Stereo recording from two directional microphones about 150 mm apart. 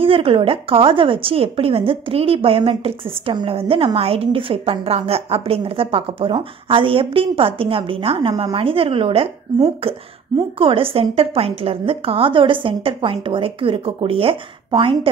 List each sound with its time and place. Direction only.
0.0 s a woman's voice: 40° right (ahead or behind)